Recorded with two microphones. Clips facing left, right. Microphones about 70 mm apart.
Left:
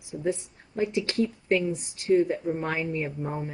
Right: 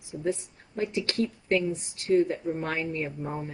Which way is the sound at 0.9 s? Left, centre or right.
Centre.